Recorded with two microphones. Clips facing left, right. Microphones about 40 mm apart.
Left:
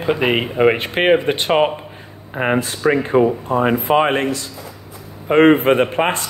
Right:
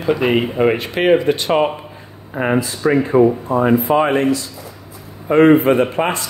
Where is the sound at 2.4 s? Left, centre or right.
Left.